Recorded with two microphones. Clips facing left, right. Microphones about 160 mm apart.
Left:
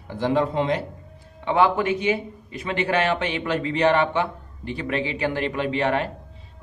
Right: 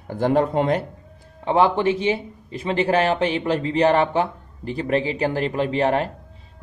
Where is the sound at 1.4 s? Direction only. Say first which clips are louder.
Right 2 dB; 35° right (ahead or behind).